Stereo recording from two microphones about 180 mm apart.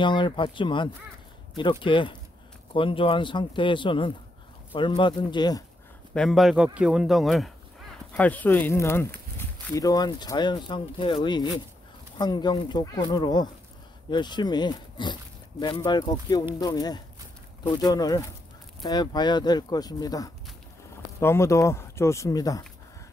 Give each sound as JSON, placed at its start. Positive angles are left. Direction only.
{"t": 0.0, "sound": "speech", "side_deg": 25}
{"t": 6.1, "sound": "speech", "side_deg": 0}